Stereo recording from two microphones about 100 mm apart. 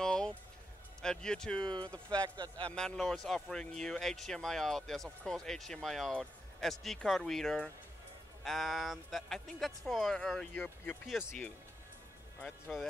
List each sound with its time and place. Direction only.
0.0 s music: 5° left (ahead or behind)
1.0 s speech: 5° left (ahead or behind)
1.6 s a man's voice: 50° right (ahead or behind)
2.6 s speech: 10° left (ahead or behind)
10.5 s speech: 15° left (ahead or behind)
12.4 s speech: 10° left (ahead or behind)